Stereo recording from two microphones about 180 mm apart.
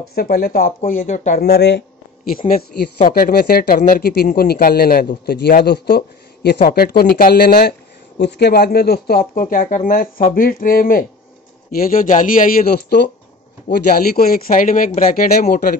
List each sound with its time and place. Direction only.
0.1 s speech: 55° left (ahead or behind)
1.4 s speech: 65° left (ahead or behind)